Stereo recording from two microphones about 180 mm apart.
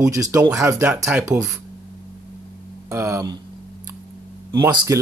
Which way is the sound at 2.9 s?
15° right (ahead or behind).